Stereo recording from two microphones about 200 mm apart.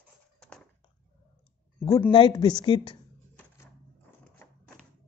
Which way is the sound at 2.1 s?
20° left (ahead or behind).